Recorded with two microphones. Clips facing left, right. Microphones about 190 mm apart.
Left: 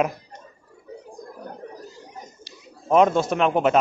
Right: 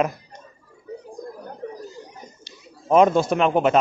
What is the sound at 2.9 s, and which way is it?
Speech, centre (ahead or behind).